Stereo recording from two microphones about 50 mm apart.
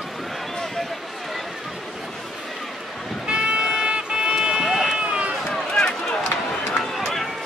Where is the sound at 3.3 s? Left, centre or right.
Centre.